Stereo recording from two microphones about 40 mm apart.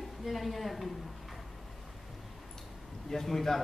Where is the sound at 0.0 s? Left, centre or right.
Centre.